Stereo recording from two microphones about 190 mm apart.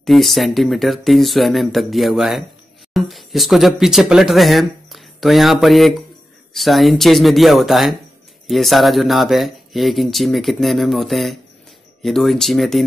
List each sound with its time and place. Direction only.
0.0 s speech: centre (ahead or behind)